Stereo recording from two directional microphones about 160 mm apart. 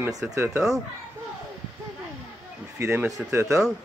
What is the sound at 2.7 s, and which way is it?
Speech, 15° right (ahead or behind).